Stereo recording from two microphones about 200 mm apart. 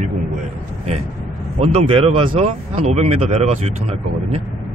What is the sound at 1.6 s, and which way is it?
Speech, 30° right (ahead or behind).